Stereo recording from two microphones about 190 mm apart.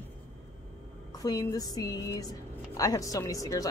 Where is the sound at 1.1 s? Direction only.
20° left (ahead or behind).